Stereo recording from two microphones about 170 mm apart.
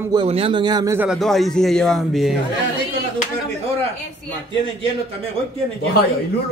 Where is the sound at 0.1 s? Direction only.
35° right (ahead or behind).